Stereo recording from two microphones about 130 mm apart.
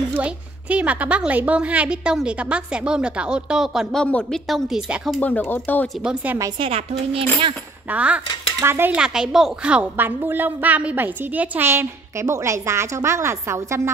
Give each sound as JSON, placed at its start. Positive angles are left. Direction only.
{"t": 0.1, "sound": "speech", "side_deg": -10}
{"t": 5.2, "sound": "speech", "side_deg": 15}
{"t": 6.6, "sound": "a woman's voice", "side_deg": -50}
{"t": 7.9, "sound": "speech", "side_deg": -10}